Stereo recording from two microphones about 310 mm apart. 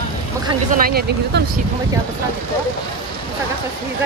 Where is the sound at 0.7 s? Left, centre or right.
Right.